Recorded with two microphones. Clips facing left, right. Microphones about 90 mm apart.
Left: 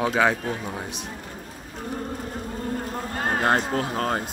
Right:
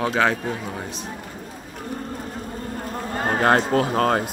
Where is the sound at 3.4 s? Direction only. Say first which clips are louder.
Right 6 dB; 90° right.